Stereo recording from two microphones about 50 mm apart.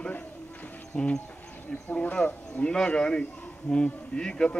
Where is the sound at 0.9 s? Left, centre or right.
Left.